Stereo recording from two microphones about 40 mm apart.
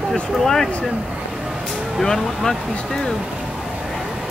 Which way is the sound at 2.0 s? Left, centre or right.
Centre.